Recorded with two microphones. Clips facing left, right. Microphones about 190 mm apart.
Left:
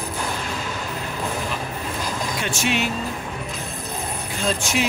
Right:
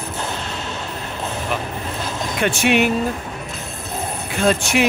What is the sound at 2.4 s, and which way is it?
Speech, 60° right (ahead or behind).